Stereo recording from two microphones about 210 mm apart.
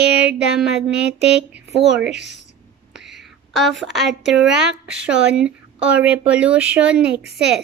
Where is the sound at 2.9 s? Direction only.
Centre (ahead or behind).